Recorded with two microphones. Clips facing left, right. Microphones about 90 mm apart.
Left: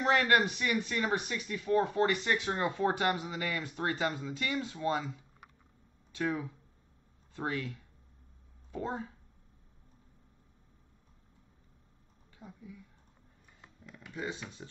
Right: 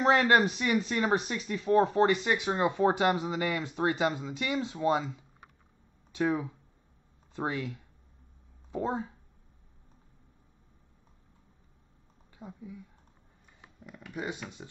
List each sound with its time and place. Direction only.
0.0 s speech: 30° right (ahead or behind)
7.3 s speech: 20° right (ahead or behind)
12.4 s speech: 25° right (ahead or behind)
13.6 s a sound: 15° right (ahead or behind)
14.1 s speech: 20° right (ahead or behind)